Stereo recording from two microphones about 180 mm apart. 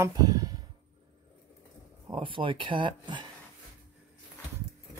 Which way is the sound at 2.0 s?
25° right (ahead or behind).